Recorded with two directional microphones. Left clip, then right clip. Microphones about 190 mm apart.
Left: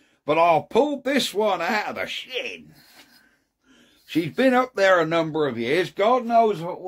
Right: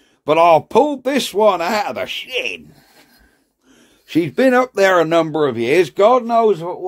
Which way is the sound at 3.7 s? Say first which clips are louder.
Right 7 dB; 35° right (ahead or behind).